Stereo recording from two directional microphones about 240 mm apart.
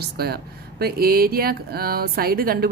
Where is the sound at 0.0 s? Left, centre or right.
Right.